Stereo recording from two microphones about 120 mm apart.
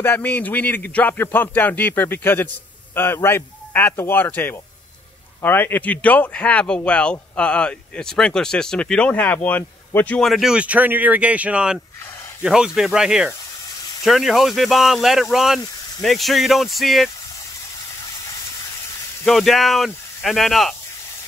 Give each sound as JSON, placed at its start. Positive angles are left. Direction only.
{"t": 0.0, "sound": "speech", "side_deg": 15}
{"t": 10.2, "sound": "speech", "side_deg": 0}
{"t": 19.2, "sound": "speech", "side_deg": 0}